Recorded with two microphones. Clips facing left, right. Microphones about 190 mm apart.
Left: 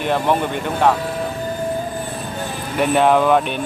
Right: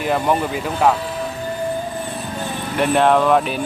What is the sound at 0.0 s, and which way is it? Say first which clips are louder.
Speech: even; centre (ahead or behind).